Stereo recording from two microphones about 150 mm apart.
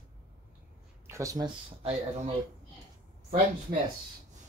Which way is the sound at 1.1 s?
20° right (ahead or behind).